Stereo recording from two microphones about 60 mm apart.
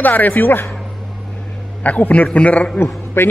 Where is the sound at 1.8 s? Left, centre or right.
Left.